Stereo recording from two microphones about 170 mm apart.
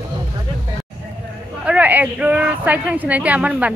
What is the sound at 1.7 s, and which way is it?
A woman's voice, 10° right (ahead or behind).